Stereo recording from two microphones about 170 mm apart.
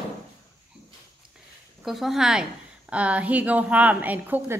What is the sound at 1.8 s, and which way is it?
A woman's voice, centre (ahead or behind).